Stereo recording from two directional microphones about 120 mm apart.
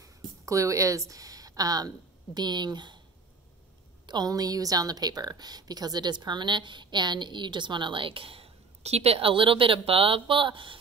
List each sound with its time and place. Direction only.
0.0 s speech: 25° right (ahead or behind)
4.0 s speech: 35° right (ahead or behind)